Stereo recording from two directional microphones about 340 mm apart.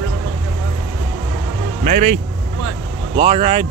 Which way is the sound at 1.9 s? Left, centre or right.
Right.